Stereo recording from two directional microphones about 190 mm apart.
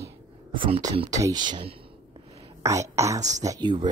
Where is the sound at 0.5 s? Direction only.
30° right (ahead or behind).